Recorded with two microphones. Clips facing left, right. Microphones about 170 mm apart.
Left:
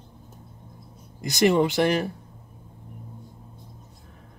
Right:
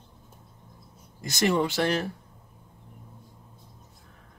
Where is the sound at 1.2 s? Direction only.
15° left (ahead or behind).